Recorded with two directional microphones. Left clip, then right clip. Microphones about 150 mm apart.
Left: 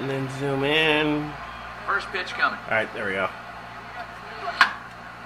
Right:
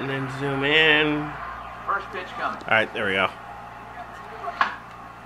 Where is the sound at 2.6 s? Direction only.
40° right (ahead or behind).